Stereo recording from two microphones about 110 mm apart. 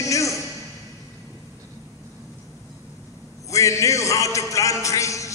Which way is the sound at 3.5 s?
30° left (ahead or behind).